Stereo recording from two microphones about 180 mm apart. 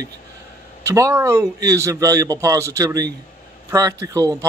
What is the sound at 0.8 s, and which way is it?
Speech, 15° right (ahead or behind).